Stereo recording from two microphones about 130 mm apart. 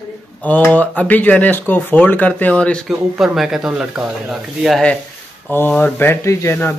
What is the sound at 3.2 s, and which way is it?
Speech, 5° right (ahead or behind).